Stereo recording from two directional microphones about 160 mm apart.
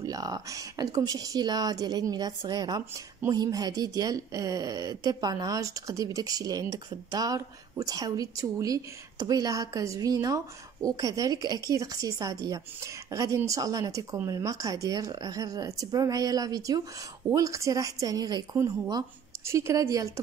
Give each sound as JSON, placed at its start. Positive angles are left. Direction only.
{"t": 0.0, "sound": "speech", "side_deg": -25}